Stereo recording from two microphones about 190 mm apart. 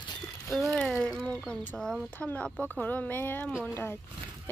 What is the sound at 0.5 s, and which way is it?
Speech, centre (ahead or behind).